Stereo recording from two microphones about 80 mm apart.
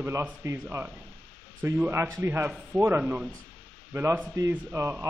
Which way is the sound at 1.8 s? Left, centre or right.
Right.